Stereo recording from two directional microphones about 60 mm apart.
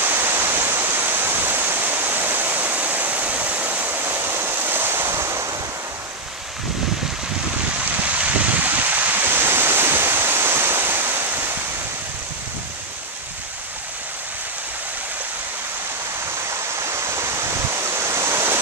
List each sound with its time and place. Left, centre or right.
0.0 s waterfall: right
8.2 s waves: right
16.8 s waves: right